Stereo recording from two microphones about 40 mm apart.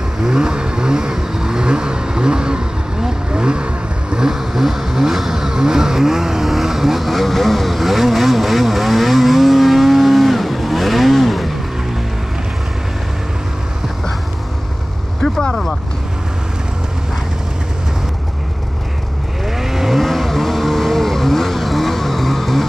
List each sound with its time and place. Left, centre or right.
0.2 s vehicle: centre
4.3 s vehicle: centre
15.2 s vehicle: centre
19.4 s vehicle: centre
20.0 s vehicle: centre